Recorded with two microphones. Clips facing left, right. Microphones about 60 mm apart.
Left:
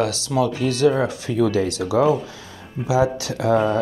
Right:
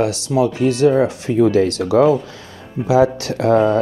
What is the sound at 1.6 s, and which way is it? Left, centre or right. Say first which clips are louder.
Speech: right 5 dB; right.